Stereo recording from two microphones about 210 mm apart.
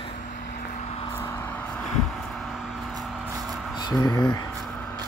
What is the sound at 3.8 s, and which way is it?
Speech, 20° left (ahead or behind).